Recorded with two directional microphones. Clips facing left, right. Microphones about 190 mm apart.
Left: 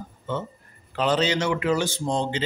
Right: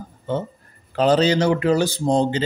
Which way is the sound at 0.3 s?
35° right (ahead or behind).